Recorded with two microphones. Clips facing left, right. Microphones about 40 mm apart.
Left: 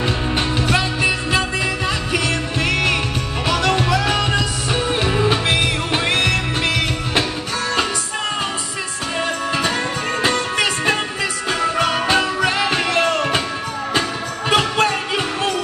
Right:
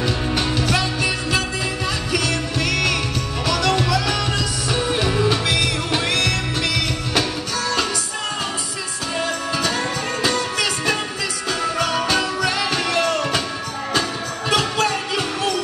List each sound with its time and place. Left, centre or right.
0.4 s music: left
10.2 s music: left
14.5 s music: left